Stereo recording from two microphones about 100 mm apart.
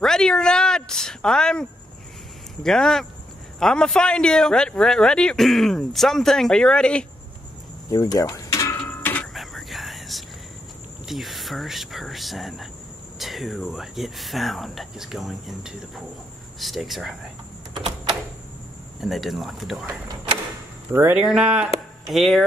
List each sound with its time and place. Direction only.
0.0 s speech: 5° left (ahead or behind)
7.9 s cricket: 35° left (ahead or behind)
8.6 s mechanisms: 20° left (ahead or behind)
9.3 s a sound: centre (ahead or behind)
11.1 s speech: centre (ahead or behind)
17.7 s a sound: 55° right (ahead or behind)
18.9 s speech: centre (ahead or behind)
20.9 s speech: 20° right (ahead or behind)
21.2 s speech: 5° right (ahead or behind)